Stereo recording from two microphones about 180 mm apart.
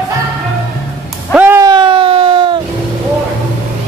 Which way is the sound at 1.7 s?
25° right (ahead or behind).